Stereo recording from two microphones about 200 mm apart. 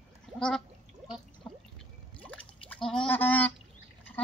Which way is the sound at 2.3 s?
5° left (ahead or behind).